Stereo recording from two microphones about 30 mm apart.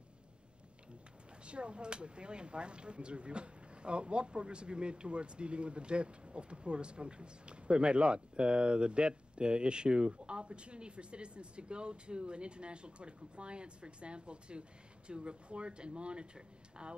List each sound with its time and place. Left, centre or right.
1.4 s speech: right